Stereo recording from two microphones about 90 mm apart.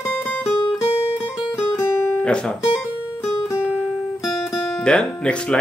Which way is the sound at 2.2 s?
10° left (ahead or behind).